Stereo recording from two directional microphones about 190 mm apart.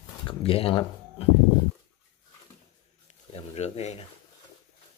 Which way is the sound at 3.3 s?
35° left (ahead or behind).